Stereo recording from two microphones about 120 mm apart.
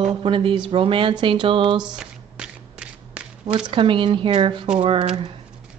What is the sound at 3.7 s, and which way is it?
Speech, 45° right (ahead or behind).